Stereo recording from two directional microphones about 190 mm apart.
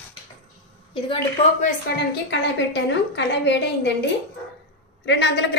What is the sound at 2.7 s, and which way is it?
A woman's voice, 65° left (ahead or behind).